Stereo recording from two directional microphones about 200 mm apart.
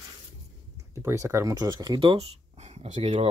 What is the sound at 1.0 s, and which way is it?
Speech, 15° right (ahead or behind).